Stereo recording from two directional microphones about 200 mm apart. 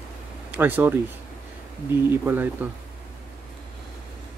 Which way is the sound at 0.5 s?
10° right (ahead or behind).